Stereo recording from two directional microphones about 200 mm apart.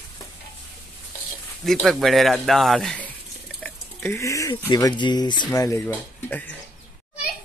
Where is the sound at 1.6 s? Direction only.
Centre (ahead or behind); by 5.8 s 15° left (ahead or behind).